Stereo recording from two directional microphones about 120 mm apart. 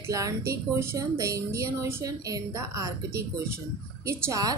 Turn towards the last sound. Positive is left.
turn(degrees=-25)  # may be behind; listen again after turning